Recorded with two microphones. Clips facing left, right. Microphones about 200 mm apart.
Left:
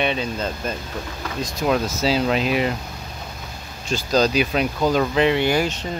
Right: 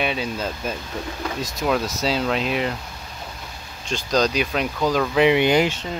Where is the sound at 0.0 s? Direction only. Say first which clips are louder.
Left 2 dB; 5° right (ahead or behind).